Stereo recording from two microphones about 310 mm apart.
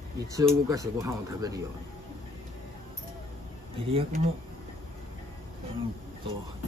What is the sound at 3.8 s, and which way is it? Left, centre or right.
Speech, centre.